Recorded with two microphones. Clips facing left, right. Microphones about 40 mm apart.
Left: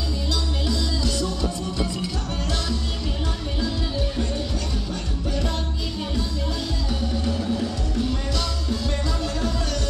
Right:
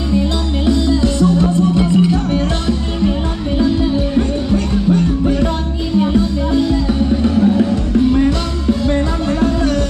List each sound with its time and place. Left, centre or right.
0.1 s music: right